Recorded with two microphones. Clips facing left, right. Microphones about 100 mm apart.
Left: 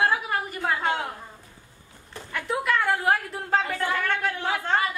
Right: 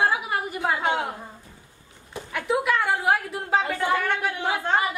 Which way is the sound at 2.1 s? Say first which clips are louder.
Right 4 dB; 5° right (ahead or behind).